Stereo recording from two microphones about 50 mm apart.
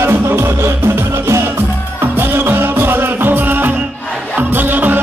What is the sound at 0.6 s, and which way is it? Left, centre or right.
Music, right.